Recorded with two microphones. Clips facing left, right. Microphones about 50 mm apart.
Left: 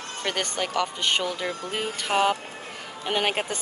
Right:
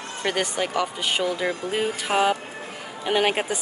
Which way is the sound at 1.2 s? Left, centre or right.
Centre.